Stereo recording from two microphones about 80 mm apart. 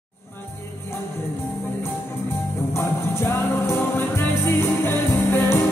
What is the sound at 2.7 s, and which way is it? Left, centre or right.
Music, left.